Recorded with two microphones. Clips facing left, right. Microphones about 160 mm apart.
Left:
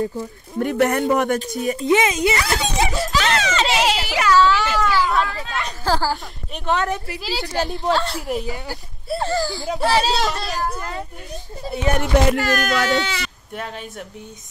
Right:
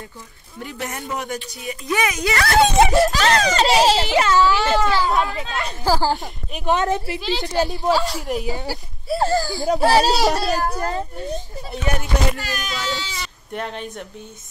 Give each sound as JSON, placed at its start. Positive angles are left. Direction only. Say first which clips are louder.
{"t": 0.6, "sound": "a man's voice", "louder": "left 12 dB", "side_deg": 60}
{"t": 1.5, "sound": "speech", "louder": "left 9 dB", "side_deg": 45}
{"t": 1.8, "sound": "speech", "louder": "left 4 dB", "side_deg": 25}
{"t": 2.3, "sound": "speech", "louder": "right 6 dB", "side_deg": -65}
{"t": 3.1, "sound": "a child's voice", "louder": "right 2 dB", "side_deg": -40}
{"t": 7.2, "sound": "a woman's voice", "louder": "right 3 dB", "side_deg": 5}
{"t": 9.2, "sound": "a child's voice", "louder": "right 3 dB", "side_deg": -40}
{"t": 12.0, "sound": "music", "louder": "left 6 dB", "side_deg": 75}
{"t": 13.5, "sound": "a woman's voice", "louder": "right 6 dB", "side_deg": 5}